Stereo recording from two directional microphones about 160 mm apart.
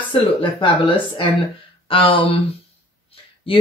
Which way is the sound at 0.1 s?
30° left (ahead or behind).